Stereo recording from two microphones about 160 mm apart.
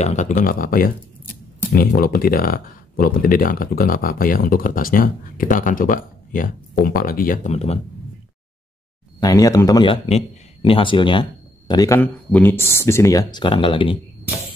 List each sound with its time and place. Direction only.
0.0 s speech: 50° left (ahead or behind); by 7.3 s 65° left (ahead or behind)
7.4 s speech: 40° left (ahead or behind)
9.2 s speech: 20° left (ahead or behind)
10.0 s speech: 35° left (ahead or behind)
12.0 s speech: 10° left (ahead or behind); by 13.9 s 30° left (ahead or behind)